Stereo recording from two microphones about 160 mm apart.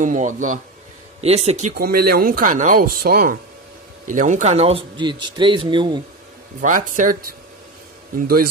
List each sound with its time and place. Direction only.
0.0 s speech: 55° right (ahead or behind)
1.2 s speech: 40° right (ahead or behind)
1.7 s speech: 70° right (ahead or behind)
4.1 s speech: 50° right (ahead or behind); by 6.0 s 30° right (ahead or behind)
6.6 s speech: 55° right (ahead or behind)